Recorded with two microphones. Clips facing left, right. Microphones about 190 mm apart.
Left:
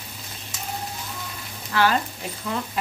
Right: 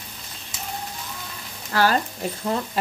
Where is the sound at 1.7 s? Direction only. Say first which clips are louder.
Right 1 dB; 40° right (ahead or behind).